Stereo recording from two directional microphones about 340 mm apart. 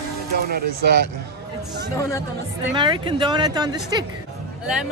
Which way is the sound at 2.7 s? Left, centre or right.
Centre.